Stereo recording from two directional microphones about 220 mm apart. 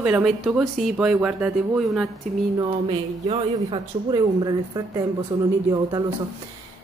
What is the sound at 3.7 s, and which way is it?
Speech, 20° right (ahead or behind).